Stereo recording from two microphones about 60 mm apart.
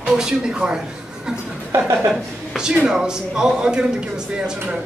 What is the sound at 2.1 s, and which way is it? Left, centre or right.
Speech, centre.